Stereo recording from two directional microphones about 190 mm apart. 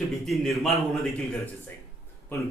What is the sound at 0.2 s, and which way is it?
Speech, centre (ahead or behind).